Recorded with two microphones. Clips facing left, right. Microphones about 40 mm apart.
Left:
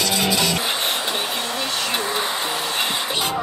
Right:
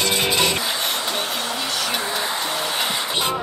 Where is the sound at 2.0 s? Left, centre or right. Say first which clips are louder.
Left 1 dB; left.